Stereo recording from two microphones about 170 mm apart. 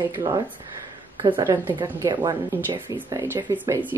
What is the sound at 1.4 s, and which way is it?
Speech, 15° right (ahead or behind).